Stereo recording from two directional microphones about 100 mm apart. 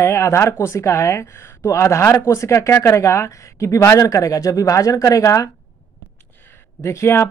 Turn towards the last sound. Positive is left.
turn(degrees=30)  # may be behind; listen again after turning